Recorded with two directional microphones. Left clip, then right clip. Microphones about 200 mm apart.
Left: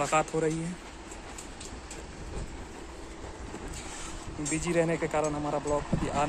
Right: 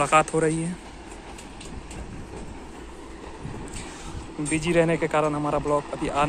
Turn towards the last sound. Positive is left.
turn(degrees=0)  # may be behind; listen again after turning